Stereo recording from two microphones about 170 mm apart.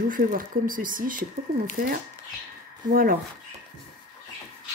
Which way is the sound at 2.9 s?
55° right (ahead or behind).